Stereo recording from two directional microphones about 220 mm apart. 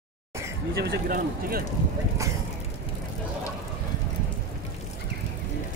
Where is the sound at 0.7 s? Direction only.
45° right (ahead or behind).